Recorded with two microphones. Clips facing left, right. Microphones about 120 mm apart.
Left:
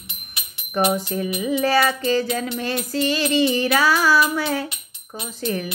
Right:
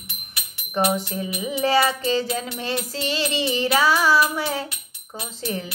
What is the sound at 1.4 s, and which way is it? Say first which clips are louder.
Music: left 1 dB; 25° right (ahead or behind).